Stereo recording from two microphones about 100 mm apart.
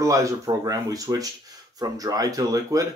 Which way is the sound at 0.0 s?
35° right (ahead or behind).